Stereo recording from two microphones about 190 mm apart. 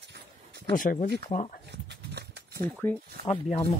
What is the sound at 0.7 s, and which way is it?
Speech, 45° left (ahead or behind).